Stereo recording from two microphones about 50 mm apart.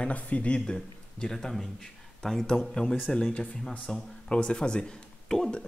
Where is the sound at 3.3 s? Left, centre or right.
Left.